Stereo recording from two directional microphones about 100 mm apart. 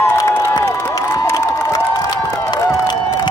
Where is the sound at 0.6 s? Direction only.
30° left (ahead or behind).